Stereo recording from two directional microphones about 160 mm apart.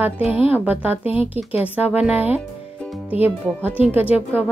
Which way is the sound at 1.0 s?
40° left (ahead or behind).